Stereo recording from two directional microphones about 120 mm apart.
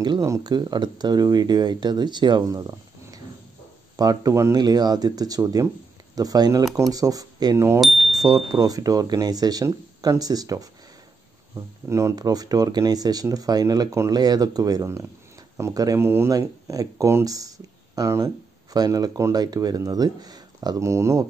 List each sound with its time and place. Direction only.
0.2 s speech: 30° right (ahead or behind)
7.8 s bicycle bell: centre (ahead or behind)
8.5 s speech: 30° right (ahead or behind)
11.9 s speech: 30° right (ahead or behind)